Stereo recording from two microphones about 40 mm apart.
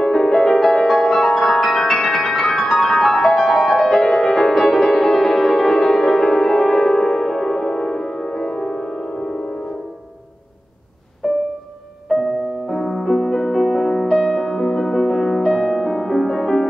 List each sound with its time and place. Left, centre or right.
0.0 s music: centre
1.1 s music: centre
1.5 s music: centre
11.2 s music: centre